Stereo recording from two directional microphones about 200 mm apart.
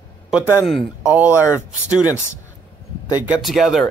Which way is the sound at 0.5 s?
Centre (ahead or behind).